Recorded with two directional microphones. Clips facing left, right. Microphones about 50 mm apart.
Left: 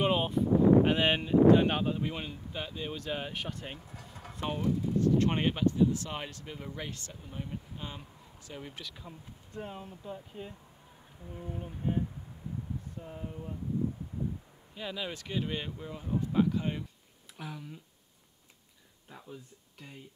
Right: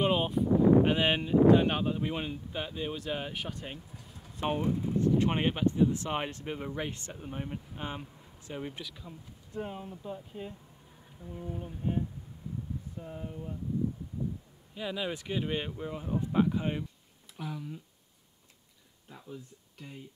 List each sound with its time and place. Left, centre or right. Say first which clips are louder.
0.0 s a sound: right 1 dB; centre
0.8 s speech: even; centre
2.0 s speech: right 3 dB; centre
4.1 s a sound: left 4 dB; left
4.4 s speech: right 2 dB; right
5.1 s speech: even; centre
5.7 s speech: right 1 dB; right
9.6 s speech: right 3 dB; centre
11.3 s a sound: right 1 dB; centre
13.0 s speech: right 1 dB; centre
13.3 s speech: right 1 dB; centre
14.8 s speech: right 3 dB; centre
17.4 s speech: right 4 dB; centre
19.0 s speech: right 2 dB; centre